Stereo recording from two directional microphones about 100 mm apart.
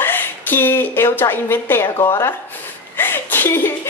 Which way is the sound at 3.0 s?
20° left (ahead or behind).